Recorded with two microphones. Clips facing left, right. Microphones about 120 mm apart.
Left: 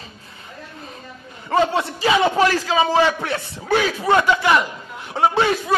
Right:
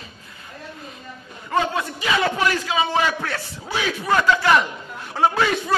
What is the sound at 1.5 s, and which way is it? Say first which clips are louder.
A man's voice: left 4 dB; 30° left (ahead or behind).